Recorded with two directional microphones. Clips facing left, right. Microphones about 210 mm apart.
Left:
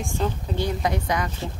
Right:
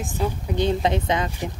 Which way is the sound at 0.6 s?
25° right (ahead or behind).